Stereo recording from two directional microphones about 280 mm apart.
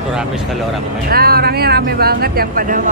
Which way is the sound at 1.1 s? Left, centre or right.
Right.